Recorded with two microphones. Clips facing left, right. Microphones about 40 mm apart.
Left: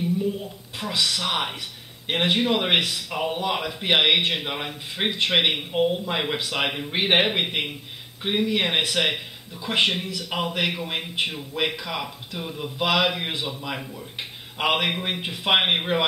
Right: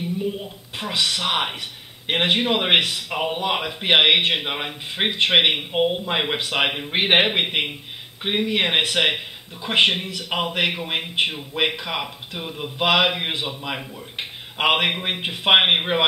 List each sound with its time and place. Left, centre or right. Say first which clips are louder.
0.0 s speech: left 1 dB; right